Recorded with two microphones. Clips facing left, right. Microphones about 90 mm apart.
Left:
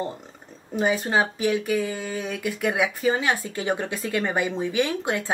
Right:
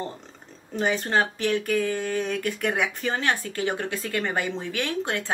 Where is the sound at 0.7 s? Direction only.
10° left (ahead or behind).